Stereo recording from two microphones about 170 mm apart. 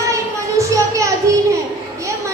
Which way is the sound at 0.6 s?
20° right (ahead or behind).